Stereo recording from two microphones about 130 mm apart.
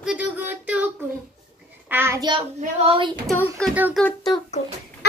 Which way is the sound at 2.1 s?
40° right (ahead or behind).